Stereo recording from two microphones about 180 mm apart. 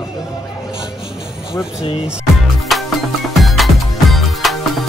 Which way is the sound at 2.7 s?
Centre (ahead or behind).